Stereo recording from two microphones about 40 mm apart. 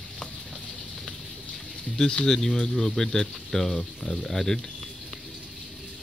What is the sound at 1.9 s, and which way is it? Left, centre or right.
Speech, centre.